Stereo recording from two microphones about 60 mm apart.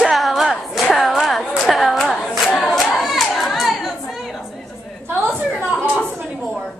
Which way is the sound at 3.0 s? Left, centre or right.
Centre.